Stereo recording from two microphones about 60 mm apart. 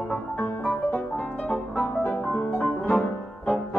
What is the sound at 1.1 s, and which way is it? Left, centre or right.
Music, left.